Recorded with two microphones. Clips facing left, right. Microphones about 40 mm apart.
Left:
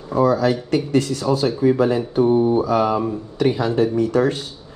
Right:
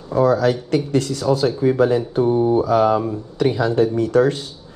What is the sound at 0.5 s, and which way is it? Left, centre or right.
Speech, left.